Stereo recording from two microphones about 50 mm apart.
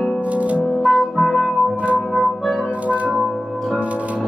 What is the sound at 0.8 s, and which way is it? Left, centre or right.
Music, centre.